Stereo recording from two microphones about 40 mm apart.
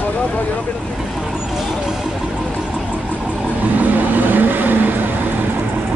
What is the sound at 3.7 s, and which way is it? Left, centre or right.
Vehicle, right.